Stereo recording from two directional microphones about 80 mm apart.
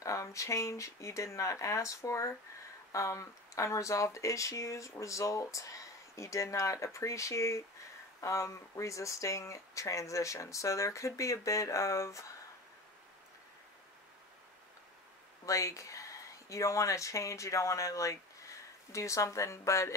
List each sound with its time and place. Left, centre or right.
0.0 s speech: left
15.4 s speech: left